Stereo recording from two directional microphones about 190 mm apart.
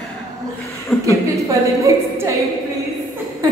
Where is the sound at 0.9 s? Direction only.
5° left (ahead or behind).